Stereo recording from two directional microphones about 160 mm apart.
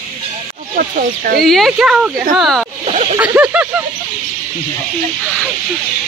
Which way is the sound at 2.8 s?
40° right (ahead or behind).